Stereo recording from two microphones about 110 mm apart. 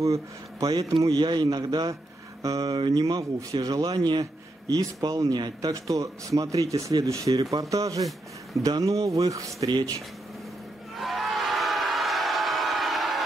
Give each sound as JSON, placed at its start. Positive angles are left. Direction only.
{"t": 0.0, "sound": "a man's voice", "side_deg": -30}
{"t": 9.7, "sound": "speech", "side_deg": -45}
{"t": 11.0, "sound": "a sound", "side_deg": 0}